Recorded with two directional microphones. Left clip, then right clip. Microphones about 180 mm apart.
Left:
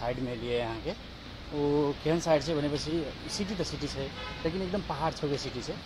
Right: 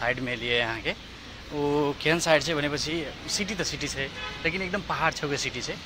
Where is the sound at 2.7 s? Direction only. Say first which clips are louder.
Right 3 dB; 5° right (ahead or behind).